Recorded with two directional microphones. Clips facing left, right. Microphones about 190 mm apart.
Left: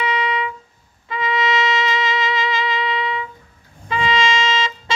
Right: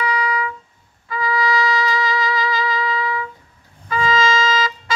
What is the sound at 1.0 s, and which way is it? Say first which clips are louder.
Trumpet: even; 20° left (ahead or behind).